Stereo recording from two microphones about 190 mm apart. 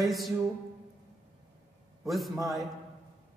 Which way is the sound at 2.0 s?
Centre (ahead or behind).